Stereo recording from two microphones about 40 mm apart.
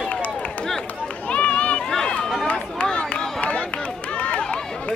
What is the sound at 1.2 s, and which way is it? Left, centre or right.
Run, left.